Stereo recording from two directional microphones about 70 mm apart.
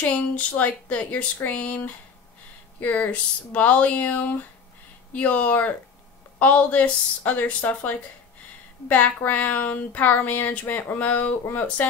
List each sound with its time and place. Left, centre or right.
0.3 s speech: left
2.8 s speech: left